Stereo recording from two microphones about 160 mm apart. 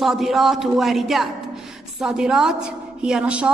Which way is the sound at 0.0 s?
Centre (ahead or behind).